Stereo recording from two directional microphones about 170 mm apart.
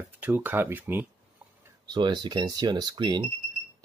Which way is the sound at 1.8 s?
25° right (ahead or behind).